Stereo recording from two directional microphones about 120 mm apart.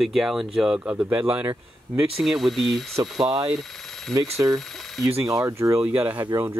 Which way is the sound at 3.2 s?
35° right (ahead or behind).